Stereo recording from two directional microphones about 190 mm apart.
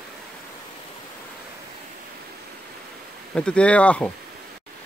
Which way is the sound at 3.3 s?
5° left (ahead or behind).